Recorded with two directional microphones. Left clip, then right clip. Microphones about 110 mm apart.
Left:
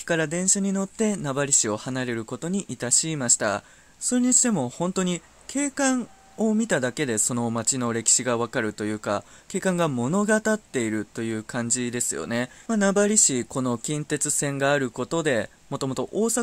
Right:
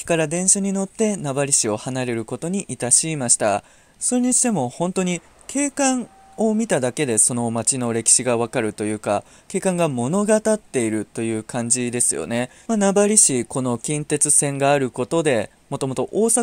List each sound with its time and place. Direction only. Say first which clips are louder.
0.0 s speech: right 4 dB; 30° right (ahead or behind)